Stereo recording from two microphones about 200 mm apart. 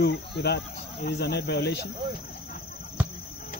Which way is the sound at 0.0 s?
55° left (ahead or behind).